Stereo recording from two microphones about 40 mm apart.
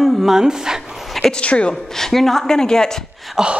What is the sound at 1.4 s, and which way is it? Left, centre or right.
Speech, left.